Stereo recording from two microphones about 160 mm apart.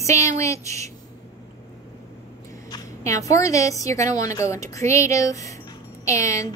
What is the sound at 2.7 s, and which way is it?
A woman's voice, 20° left (ahead or behind).